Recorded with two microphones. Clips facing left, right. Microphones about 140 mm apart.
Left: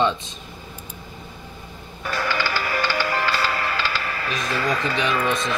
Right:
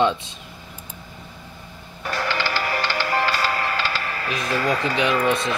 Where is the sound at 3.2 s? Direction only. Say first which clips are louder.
Right 1 dB; 40° right (ahead or behind).